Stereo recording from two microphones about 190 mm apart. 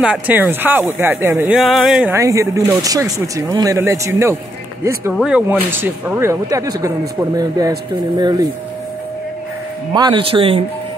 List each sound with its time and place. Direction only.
0.0 s speech: 10° right (ahead or behind)
2.1 s speech: 15° right (ahead or behind)
9.9 s speech: 25° right (ahead or behind)